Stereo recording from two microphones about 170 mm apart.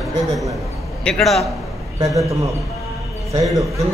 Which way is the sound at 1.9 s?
20° right (ahead or behind).